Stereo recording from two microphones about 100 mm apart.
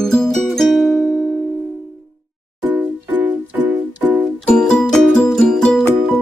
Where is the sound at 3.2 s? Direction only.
15° right (ahead or behind).